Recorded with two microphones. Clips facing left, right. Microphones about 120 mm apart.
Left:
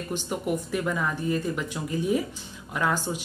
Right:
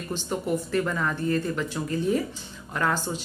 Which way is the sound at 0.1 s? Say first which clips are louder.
Right 1 dB; 10° left (ahead or behind).